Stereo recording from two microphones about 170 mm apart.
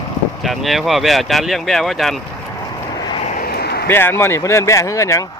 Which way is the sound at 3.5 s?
70° left (ahead or behind).